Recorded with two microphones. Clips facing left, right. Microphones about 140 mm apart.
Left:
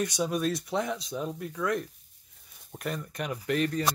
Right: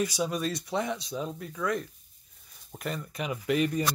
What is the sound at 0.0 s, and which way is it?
Speech, centre (ahead or behind).